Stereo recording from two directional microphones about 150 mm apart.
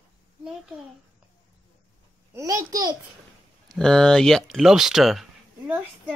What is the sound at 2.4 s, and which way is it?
Speech, 20° right (ahead or behind).